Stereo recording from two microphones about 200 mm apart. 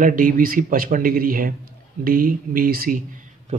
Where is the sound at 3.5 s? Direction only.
35° right (ahead or behind).